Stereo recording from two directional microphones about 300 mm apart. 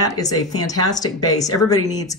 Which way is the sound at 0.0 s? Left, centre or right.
Centre.